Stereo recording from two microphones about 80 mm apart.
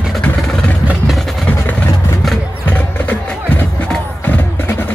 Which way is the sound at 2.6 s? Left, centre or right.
Left.